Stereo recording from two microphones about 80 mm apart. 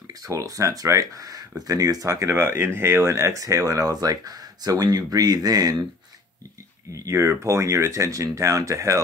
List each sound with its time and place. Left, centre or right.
0.3 s speech: right
6.9 s speech: right